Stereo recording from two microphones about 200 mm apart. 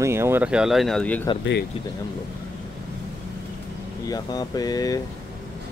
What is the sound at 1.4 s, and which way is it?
Speech, 60° left (ahead or behind).